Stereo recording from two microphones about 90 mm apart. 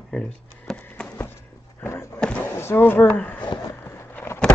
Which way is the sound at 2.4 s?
30° left (ahead or behind).